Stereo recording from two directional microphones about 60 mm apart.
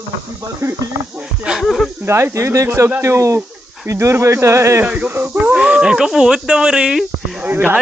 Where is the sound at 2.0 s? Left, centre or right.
Right.